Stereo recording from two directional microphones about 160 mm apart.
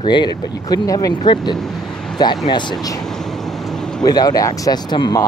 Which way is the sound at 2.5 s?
30° left (ahead or behind).